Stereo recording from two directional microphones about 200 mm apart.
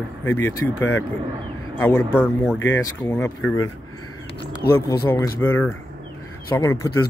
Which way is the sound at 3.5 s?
90° left.